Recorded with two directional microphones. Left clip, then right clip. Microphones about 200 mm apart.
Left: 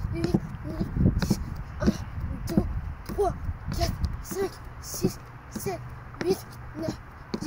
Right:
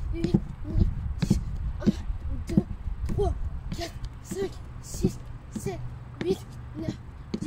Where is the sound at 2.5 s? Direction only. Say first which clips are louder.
Even; centre (ahead or behind).